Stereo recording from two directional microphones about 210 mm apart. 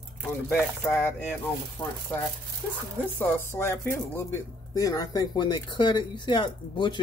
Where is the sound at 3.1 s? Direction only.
10° left (ahead or behind).